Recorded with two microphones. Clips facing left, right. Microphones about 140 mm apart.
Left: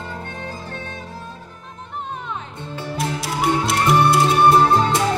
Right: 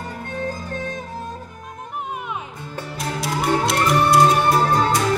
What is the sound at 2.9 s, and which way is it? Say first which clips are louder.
Music: left 1 dB; centre (ahead or behind).